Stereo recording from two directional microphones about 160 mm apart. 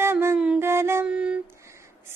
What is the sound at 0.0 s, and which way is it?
Music, 15° right (ahead or behind).